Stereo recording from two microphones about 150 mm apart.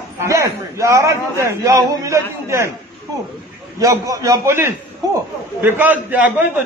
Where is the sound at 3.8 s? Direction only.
20° right (ahead or behind).